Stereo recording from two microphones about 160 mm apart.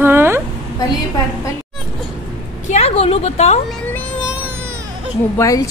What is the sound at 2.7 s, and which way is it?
Speech, 40° left (ahead or behind).